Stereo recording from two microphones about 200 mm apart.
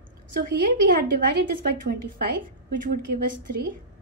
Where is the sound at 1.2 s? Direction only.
50° right (ahead or behind).